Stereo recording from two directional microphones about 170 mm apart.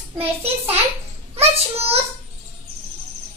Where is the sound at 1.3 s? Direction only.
35° right (ahead or behind).